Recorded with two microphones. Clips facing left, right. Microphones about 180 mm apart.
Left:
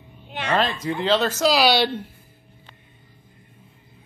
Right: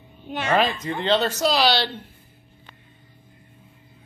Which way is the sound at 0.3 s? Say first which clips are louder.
Right 2 dB; 45° right (ahead or behind).